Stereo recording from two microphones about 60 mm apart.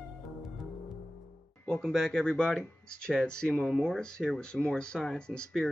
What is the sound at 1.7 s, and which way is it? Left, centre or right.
Speech, centre.